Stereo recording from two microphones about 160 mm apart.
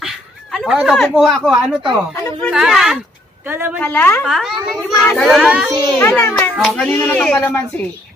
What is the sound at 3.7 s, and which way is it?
Speech, 10° left (ahead or behind).